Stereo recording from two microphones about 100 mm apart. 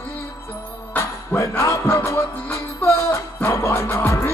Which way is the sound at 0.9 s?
20° left (ahead or behind).